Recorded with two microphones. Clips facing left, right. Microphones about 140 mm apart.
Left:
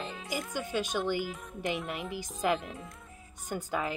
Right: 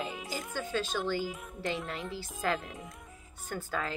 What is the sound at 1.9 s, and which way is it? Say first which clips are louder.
A woman's voice: left 2 dB; 15° left (ahead or behind).